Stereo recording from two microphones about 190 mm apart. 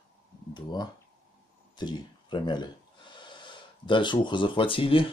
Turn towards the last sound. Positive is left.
turn(degrees=30)  # may be behind; listen again after turning